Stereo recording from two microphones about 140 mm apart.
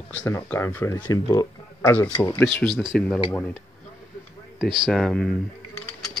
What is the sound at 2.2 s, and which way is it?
Speech, 15° left (ahead or behind).